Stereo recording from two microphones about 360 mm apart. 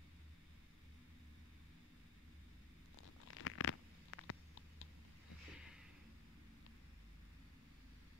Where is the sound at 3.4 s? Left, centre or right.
Left.